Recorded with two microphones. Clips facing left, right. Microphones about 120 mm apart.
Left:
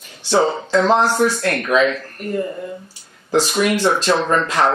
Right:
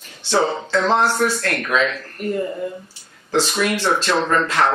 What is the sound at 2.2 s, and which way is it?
Speech, centre (ahead or behind).